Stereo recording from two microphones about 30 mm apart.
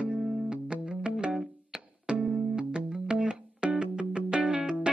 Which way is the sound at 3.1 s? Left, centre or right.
Right.